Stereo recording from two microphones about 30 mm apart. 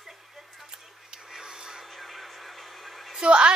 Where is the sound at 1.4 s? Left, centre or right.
Right.